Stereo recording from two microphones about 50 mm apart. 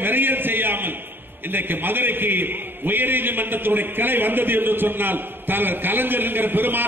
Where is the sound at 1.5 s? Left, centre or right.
Right.